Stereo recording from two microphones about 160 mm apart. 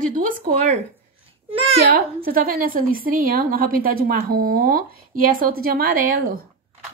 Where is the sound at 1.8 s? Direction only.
70° right (ahead or behind).